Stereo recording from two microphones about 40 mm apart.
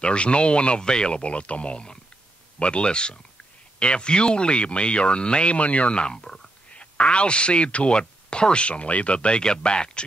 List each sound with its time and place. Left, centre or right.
0.0 s speech: left
6.7 s speech: left